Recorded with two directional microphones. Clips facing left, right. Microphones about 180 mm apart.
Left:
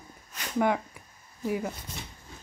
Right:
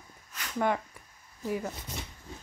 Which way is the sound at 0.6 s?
10° left (ahead or behind).